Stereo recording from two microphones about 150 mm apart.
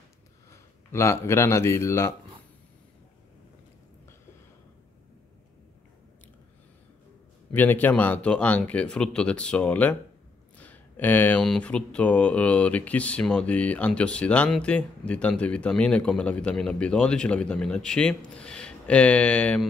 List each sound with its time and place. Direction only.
0.5 s speech: 20° left (ahead or behind)
7.5 s speech: 10° left (ahead or behind)